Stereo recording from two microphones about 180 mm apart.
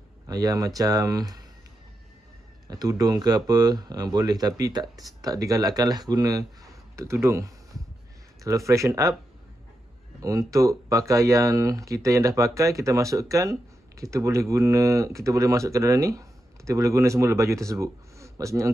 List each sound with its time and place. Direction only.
0.3 s speech: 20° right (ahead or behind)
2.7 s speech: 20° right (ahead or behind)
10.2 s speech: 15° right (ahead or behind)